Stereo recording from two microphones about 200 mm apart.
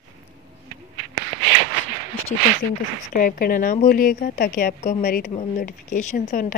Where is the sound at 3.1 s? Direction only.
45° left (ahead or behind).